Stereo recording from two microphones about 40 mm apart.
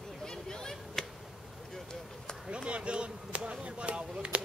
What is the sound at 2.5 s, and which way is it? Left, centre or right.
Speech, right.